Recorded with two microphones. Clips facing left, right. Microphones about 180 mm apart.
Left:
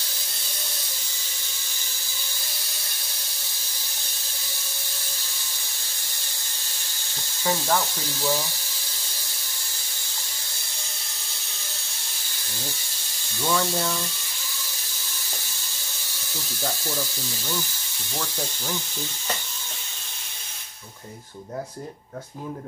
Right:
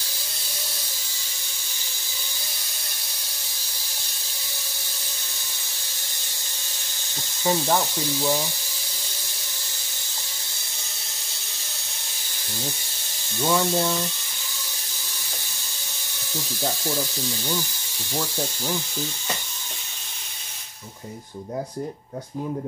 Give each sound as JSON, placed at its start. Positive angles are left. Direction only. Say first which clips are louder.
{"t": 7.4, "sound": "speech", "louder": "right 2 dB", "side_deg": -15}
{"t": 13.4, "sound": "speech", "louder": "right 3 dB", "side_deg": -20}
{"t": 18.1, "sound": "speech", "louder": "right 4 dB", "side_deg": -15}